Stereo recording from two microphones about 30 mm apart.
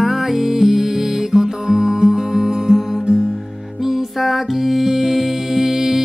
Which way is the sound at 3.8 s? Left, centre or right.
Centre.